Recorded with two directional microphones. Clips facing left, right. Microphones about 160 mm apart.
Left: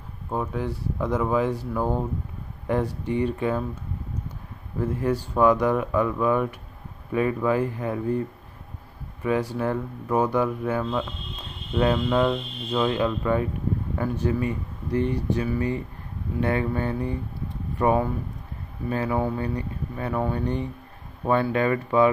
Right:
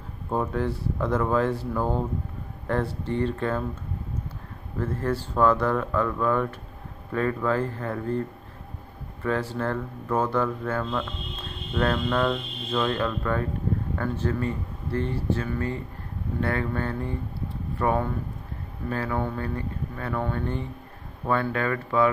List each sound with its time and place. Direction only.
0.3 s speech: 5° left (ahead or behind)
4.7 s speech: 15° left (ahead or behind)